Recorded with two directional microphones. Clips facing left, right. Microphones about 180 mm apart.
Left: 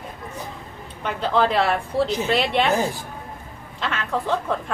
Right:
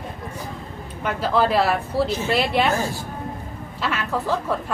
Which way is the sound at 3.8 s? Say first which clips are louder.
Right 1 dB; 5° right (ahead or behind).